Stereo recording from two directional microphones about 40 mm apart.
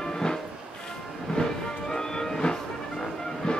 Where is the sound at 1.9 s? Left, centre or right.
Centre.